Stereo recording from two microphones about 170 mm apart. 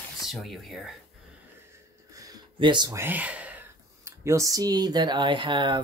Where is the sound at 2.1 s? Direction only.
25° right (ahead or behind).